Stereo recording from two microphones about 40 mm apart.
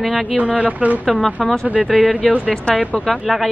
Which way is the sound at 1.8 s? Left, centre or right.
Centre.